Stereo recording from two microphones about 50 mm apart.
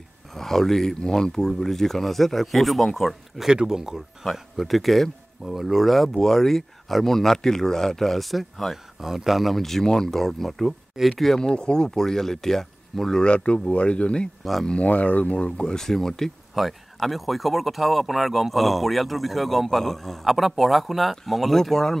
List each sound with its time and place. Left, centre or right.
0.3 s speech: centre
3.4 s speech: centre
13.2 s speech: left
14.4 s speech: centre
14.7 s speech: left
15.3 s speech: centre